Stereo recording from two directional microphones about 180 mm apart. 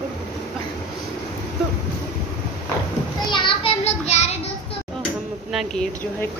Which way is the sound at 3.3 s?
30° left (ahead or behind).